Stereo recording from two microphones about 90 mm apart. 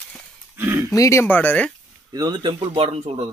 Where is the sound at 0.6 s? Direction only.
30° right (ahead or behind).